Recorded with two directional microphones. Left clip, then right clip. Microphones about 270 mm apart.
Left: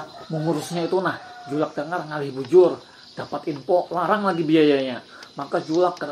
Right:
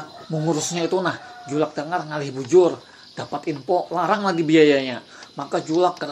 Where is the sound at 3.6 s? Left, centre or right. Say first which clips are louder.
Even; right.